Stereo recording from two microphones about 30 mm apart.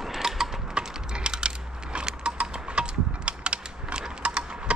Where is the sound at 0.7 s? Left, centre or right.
Right.